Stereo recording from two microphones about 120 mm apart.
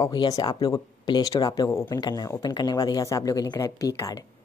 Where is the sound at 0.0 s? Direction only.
35° left (ahead or behind).